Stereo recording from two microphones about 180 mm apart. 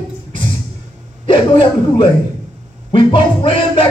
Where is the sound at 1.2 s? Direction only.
30° left (ahead or behind).